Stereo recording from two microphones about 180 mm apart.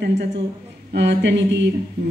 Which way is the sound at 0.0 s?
70° right (ahead or behind).